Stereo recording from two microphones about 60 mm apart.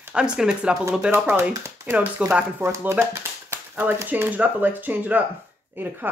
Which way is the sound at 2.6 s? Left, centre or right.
Right.